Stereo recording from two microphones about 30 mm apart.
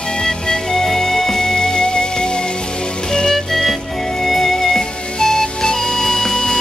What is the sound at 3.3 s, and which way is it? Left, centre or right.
Music, centre.